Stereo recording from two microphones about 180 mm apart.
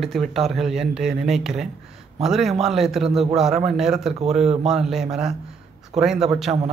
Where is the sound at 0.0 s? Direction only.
Centre (ahead or behind).